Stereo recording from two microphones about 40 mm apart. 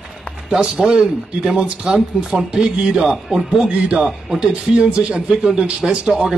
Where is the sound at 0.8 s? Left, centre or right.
Centre.